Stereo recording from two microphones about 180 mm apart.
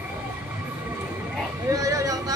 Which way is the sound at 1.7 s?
20° right (ahead or behind).